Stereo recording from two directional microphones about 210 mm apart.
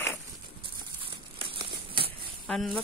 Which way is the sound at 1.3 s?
25° right (ahead or behind).